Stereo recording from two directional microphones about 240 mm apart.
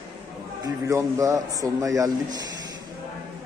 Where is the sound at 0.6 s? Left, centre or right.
Centre.